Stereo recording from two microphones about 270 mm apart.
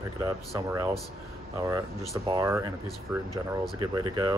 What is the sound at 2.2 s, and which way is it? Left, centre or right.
Speech, centre.